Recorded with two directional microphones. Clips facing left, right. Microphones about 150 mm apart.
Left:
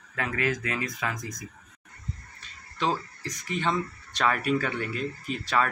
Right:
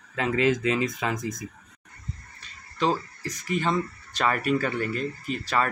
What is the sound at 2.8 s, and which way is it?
Speech, 5° right (ahead or behind).